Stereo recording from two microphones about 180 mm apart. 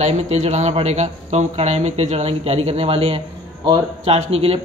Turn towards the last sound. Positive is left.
turn(degrees=-35)  # may be behind; listen again after turning